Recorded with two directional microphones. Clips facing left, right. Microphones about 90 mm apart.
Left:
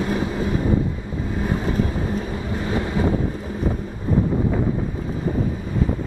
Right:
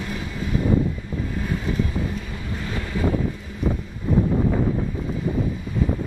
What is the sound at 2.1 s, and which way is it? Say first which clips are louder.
Vehicle: left 6 dB; 30° left (ahead or behind).